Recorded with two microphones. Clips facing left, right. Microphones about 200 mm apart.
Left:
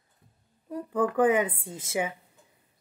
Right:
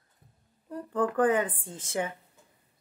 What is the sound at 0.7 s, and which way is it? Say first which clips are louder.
A woman's voice: left 2 dB; 10° left (ahead or behind).